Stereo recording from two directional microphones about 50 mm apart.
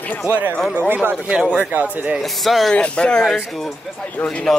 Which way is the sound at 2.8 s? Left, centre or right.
Centre.